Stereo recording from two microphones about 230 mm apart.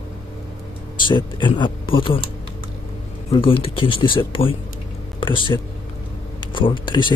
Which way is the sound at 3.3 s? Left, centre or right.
Left.